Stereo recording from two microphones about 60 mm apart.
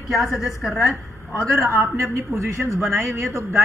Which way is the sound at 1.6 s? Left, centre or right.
Right.